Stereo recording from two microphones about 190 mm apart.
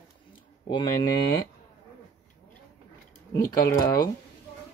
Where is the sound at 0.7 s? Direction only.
25° left (ahead or behind).